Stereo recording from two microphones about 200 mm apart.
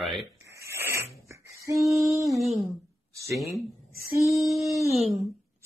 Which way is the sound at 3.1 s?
15° right (ahead or behind).